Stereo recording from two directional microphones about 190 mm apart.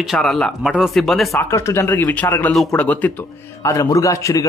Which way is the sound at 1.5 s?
15° left (ahead or behind).